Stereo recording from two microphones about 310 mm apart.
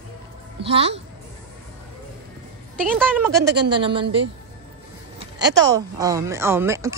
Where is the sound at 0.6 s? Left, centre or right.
Centre.